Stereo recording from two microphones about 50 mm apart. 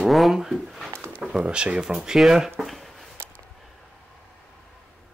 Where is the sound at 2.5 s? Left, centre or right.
Centre.